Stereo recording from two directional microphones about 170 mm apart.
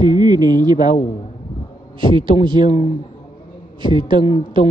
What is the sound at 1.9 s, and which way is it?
Speech, 30° right (ahead or behind).